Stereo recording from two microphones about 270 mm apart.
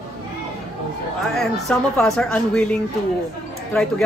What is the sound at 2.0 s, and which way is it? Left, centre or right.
Speech, centre.